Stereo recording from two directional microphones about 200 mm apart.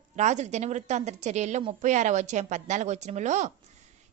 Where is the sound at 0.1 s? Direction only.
35° right (ahead or behind).